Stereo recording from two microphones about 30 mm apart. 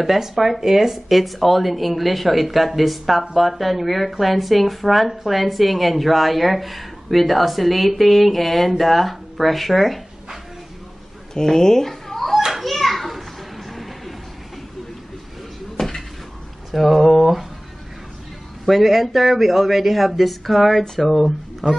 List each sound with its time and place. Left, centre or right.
0.0 s speech: centre
1.1 s a woman's voice: centre
11.3 s fowl: centre
12.6 s children playing: centre
13.7 s music: centre
15.8 s a sound: centre
16.7 s a woman's voice: centre
18.7 s a woman's voice: centre
21.1 s speech: centre